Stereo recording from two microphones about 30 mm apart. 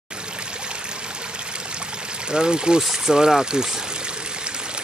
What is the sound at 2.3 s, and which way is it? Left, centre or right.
Speech, right.